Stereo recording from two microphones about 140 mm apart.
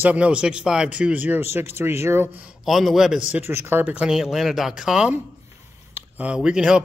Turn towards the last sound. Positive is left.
turn(degrees=-5)  # may be behind; listen again after turning